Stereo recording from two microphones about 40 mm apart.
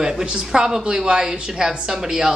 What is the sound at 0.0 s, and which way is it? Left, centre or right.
A woman's voice, centre.